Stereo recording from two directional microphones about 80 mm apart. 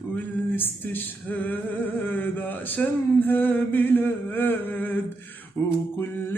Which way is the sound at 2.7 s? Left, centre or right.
Left.